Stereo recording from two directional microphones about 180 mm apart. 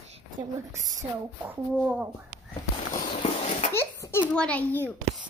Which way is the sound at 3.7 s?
15° left (ahead or behind).